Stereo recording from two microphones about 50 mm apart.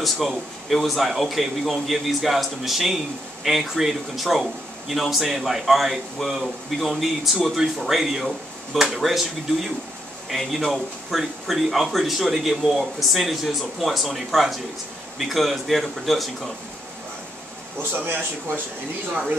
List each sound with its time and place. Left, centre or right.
0.0 s a man's voice: centre
17.9 s speech: right